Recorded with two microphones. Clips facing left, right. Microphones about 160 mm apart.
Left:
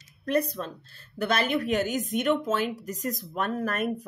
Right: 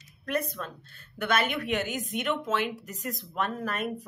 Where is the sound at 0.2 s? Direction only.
35° left (ahead or behind).